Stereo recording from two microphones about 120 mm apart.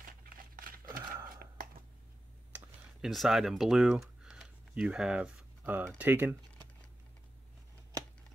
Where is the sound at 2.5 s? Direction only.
Centre (ahead or behind).